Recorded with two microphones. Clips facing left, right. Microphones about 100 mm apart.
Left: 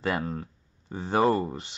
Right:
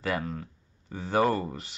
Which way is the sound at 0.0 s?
30° left (ahead or behind).